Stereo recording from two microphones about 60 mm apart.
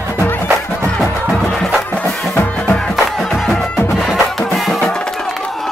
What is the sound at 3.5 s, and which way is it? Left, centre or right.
Music, centre.